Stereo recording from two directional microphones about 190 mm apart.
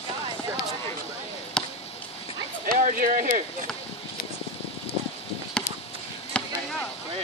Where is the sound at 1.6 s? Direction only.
5° left (ahead or behind).